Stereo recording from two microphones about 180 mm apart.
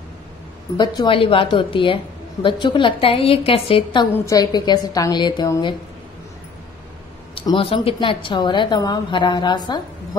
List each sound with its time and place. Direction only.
0.7 s a woman's voice: 25° left (ahead or behind)
7.3 s a woman's voice: 30° left (ahead or behind)